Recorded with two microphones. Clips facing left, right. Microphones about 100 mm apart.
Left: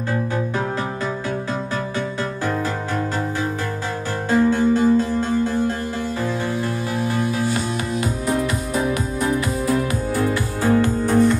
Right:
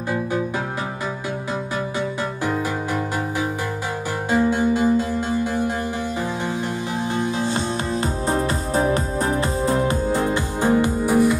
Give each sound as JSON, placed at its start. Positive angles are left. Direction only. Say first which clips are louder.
{"t": 4.3, "sound": "music", "louder": "left 2 dB", "side_deg": -15}
{"t": 7.2, "sound": "music", "louder": "right 1 dB", "side_deg": -25}